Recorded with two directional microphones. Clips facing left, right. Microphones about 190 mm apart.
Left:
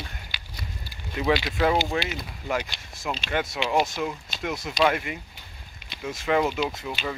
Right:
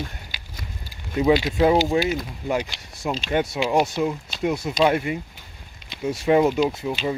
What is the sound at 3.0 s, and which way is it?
Speech, 35° right (ahead or behind).